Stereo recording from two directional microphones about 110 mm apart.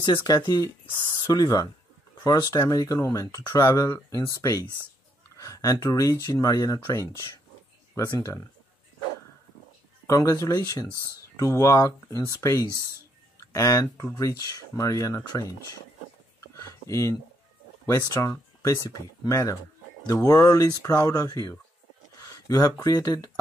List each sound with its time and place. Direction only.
0.3 s speech: 35° left (ahead or behind)
10.0 s speech: 30° left (ahead or behind)
16.3 s a sound: 30° left (ahead or behind)
17.8 s speech: 25° left (ahead or behind)